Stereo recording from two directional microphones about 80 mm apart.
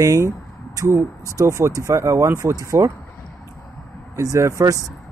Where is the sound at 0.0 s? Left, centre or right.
Right.